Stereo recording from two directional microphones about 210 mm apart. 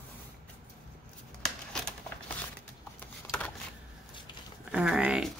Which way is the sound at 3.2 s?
5° left (ahead or behind).